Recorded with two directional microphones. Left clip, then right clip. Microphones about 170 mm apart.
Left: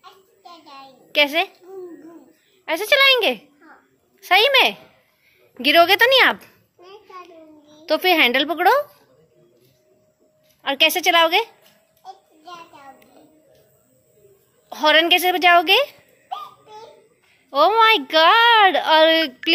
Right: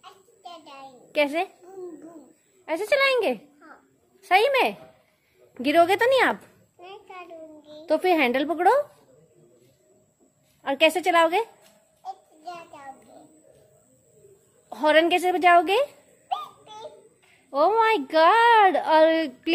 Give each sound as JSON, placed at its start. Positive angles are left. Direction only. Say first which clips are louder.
{"t": 1.1, "sound": "a woman's voice", "louder": "left 6 dB", "side_deg": -5}
{"t": 2.6, "sound": "a woman's voice", "louder": "left 6 dB", "side_deg": -5}
{"t": 6.8, "sound": "a sound", "louder": "left 1 dB", "side_deg": -40}
{"t": 7.8, "sound": "a child's voice", "louder": "left 5 dB", "side_deg": -10}
{"t": 10.6, "sound": "a child's voice", "louder": "left 3 dB", "side_deg": -10}
{"t": 14.7, "sound": "a child's voice", "louder": "left 4 dB", "side_deg": -5}
{"t": 16.3, "sound": "a sound", "louder": "right 1 dB", "side_deg": -35}
{"t": 17.5, "sound": "a child's voice", "louder": "left 6 dB", "side_deg": -5}